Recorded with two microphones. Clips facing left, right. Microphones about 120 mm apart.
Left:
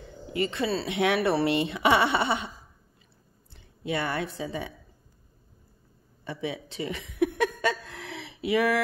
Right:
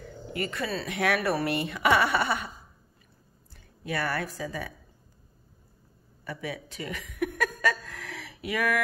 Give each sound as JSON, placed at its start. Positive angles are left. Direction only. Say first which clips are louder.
{"t": 0.0, "sound": "speech", "louder": "left 4 dB", "side_deg": 25}
{"t": 3.5, "sound": "a woman's voice", "louder": "left 2 dB", "side_deg": 25}
{"t": 6.2, "sound": "a sound", "louder": "left 3 dB", "side_deg": 25}